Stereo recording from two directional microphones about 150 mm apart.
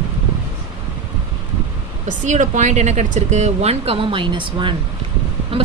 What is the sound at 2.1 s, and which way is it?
A woman's voice, 55° right (ahead or behind).